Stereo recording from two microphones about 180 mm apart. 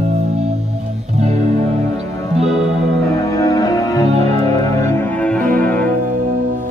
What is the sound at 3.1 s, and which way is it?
Music, 20° left (ahead or behind).